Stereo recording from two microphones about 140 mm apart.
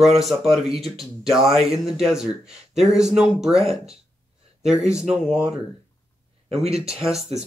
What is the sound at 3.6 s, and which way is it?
Speech, 45° right (ahead or behind).